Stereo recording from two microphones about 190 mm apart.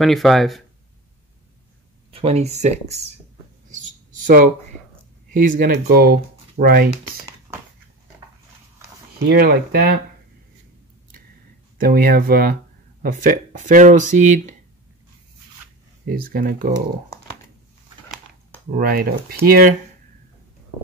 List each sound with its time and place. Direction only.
0.0 s speech: centre (ahead or behind)
2.1 s speech: 35° right (ahead or behind)
3.7 s a sound: 45° right (ahead or behind)
5.3 s speech: 45° right (ahead or behind)
9.3 s speech: 55° right (ahead or behind)
11.8 s speech: 50° right (ahead or behind)
16.1 s speech: 50° right (ahead or behind)
18.7 s speech: 50° right (ahead or behind)